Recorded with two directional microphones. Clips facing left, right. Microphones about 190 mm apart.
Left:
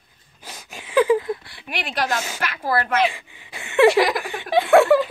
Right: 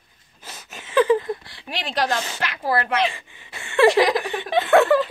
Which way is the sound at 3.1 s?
15° left (ahead or behind).